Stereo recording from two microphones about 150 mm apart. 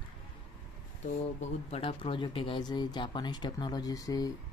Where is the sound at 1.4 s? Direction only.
45° left (ahead or behind).